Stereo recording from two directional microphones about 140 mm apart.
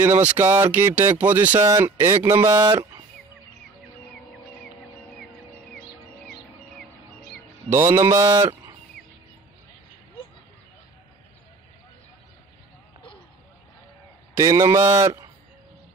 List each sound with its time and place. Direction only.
0.0 s speech: 15° right (ahead or behind)
7.7 s speech: 20° right (ahead or behind)
14.3 s speech: 25° right (ahead or behind)